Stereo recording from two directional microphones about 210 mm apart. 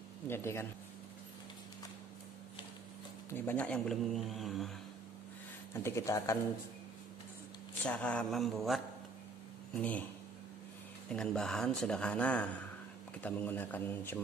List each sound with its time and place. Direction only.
0.3 s a man's voice: 10° left (ahead or behind)
3.3 s speech: 10° left (ahead or behind)
5.7 s a man's voice: 10° left (ahead or behind)
7.8 s a man's voice: 5° left (ahead or behind)
11.1 s a man's voice: 5° left (ahead or behind)